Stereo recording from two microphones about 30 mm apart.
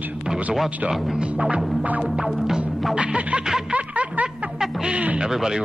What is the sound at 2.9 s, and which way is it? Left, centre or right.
Music, right.